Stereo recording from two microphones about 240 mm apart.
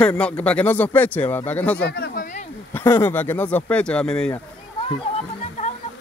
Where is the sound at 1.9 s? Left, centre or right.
Left.